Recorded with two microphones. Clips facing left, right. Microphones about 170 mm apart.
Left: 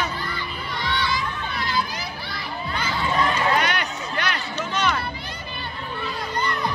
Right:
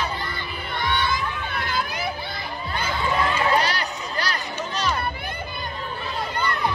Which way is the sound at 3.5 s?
35° right (ahead or behind).